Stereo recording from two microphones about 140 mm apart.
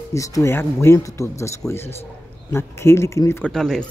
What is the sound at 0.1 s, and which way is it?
A man's voice, 20° left (ahead or behind).